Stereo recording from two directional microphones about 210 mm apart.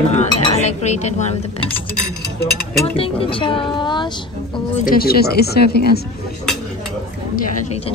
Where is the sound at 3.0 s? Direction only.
25° left (ahead or behind).